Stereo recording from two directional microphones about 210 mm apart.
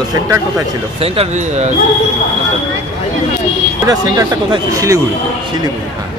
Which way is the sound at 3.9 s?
15° right (ahead or behind).